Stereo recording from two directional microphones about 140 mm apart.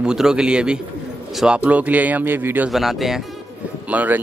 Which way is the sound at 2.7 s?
Centre (ahead or behind).